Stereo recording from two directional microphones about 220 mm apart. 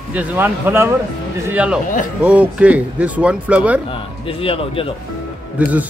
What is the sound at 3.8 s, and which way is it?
Speech, 25° left (ahead or behind).